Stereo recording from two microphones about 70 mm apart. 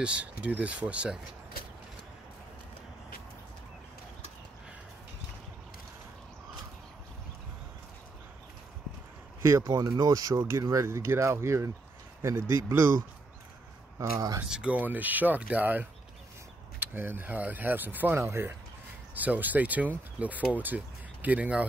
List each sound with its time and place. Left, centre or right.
0.0 s speech: centre
9.4 s speech: right
10.9 s speech: right
13.9 s speech: right
14.4 s speech: centre
18.2 s speech: right
19.1 s speech: right